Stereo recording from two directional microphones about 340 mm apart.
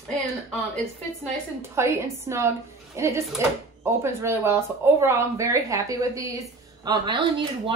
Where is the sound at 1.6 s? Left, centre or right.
Centre.